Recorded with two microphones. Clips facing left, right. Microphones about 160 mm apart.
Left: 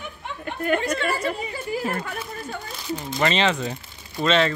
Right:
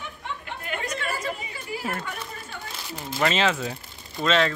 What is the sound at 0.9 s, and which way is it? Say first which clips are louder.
Chatter: left 6 dB; 65° left (ahead or behind).